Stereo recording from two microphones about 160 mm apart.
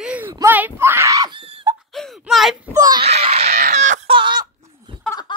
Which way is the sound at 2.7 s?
25° right (ahead or behind).